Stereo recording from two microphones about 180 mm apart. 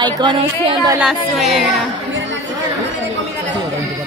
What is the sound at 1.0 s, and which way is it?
Speech, centre (ahead or behind).